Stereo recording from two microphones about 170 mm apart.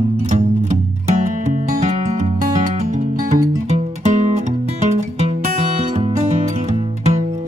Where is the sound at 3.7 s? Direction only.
40° right (ahead or behind).